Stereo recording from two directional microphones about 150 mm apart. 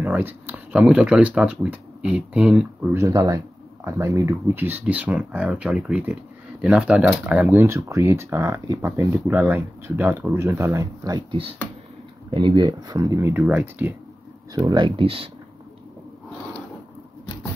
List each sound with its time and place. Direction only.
0.0 s speech: 10° right (ahead or behind)
12.3 s speech: 30° right (ahead or behind); by 13.9 s 10° right (ahead or behind)
14.7 s speech: 30° right (ahead or behind)